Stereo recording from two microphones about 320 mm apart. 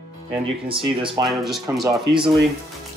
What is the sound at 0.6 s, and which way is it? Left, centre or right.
Speech, centre.